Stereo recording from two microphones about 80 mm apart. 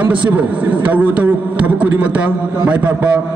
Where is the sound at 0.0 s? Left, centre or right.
Centre.